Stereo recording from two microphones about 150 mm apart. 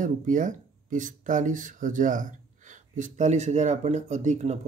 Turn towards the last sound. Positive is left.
turn(degrees=-50)  # may be behind; listen again after turning